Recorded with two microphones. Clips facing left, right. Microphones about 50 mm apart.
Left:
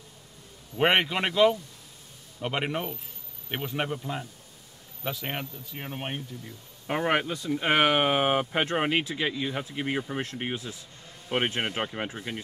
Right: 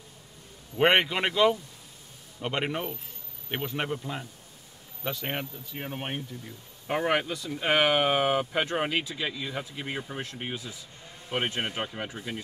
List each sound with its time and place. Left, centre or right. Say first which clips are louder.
0.7 s speech: right 1 dB; centre
6.9 s speech: left 1 dB; centre
10.4 s speech: left 3 dB; left